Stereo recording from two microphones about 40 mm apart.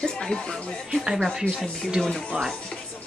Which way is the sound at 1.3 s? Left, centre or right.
Centre.